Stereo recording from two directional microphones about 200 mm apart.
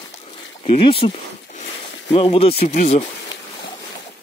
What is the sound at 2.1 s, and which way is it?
Speech, 30° left (ahead or behind).